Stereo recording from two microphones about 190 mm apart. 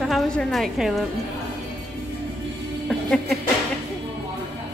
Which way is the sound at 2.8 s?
5° left (ahead or behind).